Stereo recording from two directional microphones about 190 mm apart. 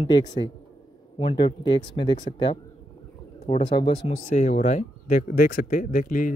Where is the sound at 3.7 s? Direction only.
25° left (ahead or behind).